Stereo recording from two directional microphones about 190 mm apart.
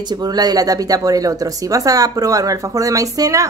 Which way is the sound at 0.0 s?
20° right (ahead or behind).